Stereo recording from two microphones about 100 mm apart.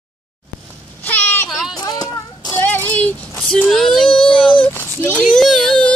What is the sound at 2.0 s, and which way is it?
Child singing, 30° left (ahead or behind).